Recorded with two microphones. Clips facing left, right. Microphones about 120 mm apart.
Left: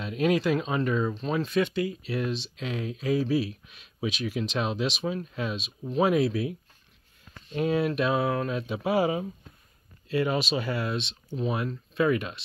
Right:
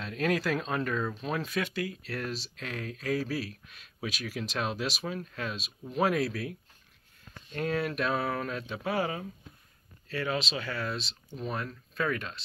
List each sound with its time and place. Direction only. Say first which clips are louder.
0.0 s speech: left 5 dB; 5° left (ahead or behind)
7.5 s speech: left 5 dB; 10° left (ahead or behind)